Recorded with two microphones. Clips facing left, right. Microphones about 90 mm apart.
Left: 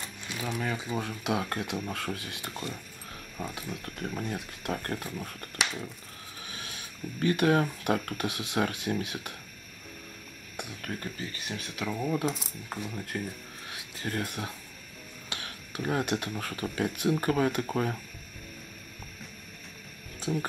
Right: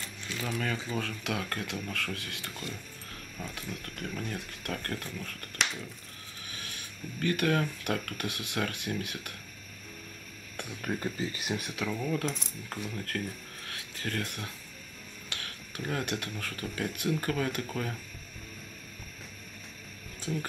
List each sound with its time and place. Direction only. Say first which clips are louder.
0.0 s speech: left 1 dB; 15° left (ahead or behind)
6.5 s speech: even; 25° left (ahead or behind)
10.8 s speech: right 6 dB; 15° right (ahead or behind)
11.7 s coin: left 4 dB; 10° left (ahead or behind)
13.7 s speech: left 1 dB; 20° left (ahead or behind)
20.2 s music: left 3 dB; 20° left (ahead or behind)